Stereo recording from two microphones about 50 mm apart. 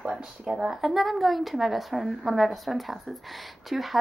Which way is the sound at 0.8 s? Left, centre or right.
Centre.